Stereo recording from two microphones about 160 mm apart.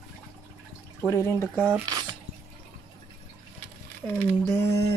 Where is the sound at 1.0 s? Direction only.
15° left (ahead or behind).